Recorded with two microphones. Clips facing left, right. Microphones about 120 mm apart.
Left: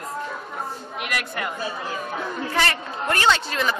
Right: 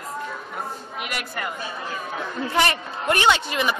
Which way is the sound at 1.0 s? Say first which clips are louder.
Left 2 dB; centre (ahead or behind).